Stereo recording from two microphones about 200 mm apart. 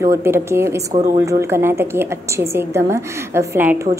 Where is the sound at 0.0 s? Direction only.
15° right (ahead or behind).